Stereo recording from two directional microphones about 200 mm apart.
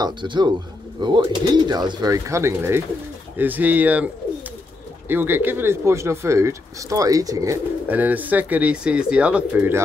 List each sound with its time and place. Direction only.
0.0 s speech: 25° right (ahead or behind)